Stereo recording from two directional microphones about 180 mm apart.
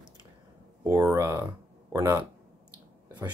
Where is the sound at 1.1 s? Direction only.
20° right (ahead or behind).